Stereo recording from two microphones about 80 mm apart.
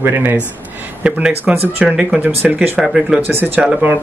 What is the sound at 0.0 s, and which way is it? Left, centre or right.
Speech, right.